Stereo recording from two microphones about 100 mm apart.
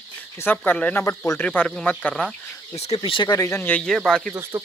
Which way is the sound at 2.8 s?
75° left (ahead or behind).